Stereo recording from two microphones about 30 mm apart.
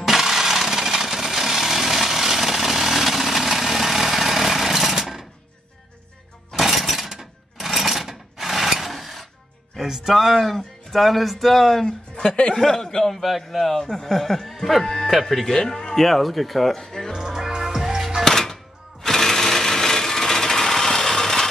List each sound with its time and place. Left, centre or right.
0.0 s a sound: centre
6.5 s a sound: centre
7.2 s sewing machine: centre
9.8 s music: centre
10.1 s speech: centre
11.8 s speech: left
13.2 s speech: centre
15.9 s speech: centre
16.7 s speech: centre
17.2 s music: centre
18.2 s music: centre
19.0 s sewing machine: centre